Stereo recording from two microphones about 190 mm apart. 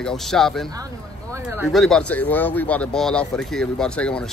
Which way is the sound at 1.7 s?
Centre (ahead or behind).